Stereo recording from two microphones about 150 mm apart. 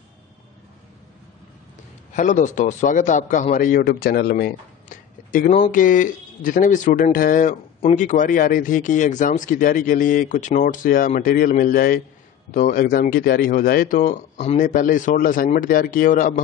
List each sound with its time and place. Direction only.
2.1 s speech: 55° left (ahead or behind)
3.5 s speech: 65° left (ahead or behind)
12.4 s speech: 60° left (ahead or behind)
14.6 s speech: 65° left (ahead or behind)